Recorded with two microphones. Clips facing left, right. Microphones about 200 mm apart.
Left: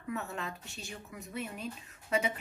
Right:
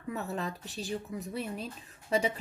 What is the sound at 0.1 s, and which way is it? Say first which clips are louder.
Speech: right 3 dB; 35° right (ahead or behind).